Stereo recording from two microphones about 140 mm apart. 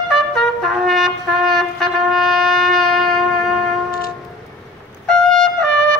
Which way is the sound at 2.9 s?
5° left (ahead or behind).